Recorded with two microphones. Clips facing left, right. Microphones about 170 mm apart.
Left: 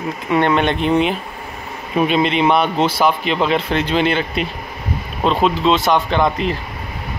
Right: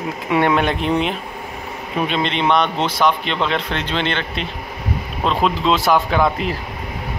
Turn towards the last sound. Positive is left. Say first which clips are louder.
# left 1 dB
turn(degrees=-5)  # may be behind; listen again after turning